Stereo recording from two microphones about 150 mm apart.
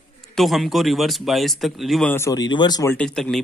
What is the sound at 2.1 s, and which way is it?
Speech, 25° left (ahead or behind).